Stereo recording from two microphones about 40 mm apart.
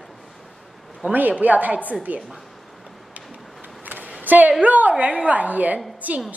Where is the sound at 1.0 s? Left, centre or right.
Right.